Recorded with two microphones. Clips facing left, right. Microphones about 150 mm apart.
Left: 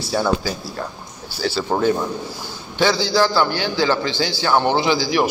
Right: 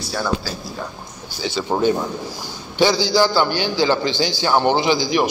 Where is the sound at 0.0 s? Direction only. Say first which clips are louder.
Left 4 dB; 25° left (ahead or behind).